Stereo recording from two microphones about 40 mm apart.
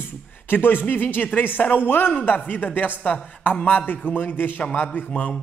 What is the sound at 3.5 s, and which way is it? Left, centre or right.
Speech, left.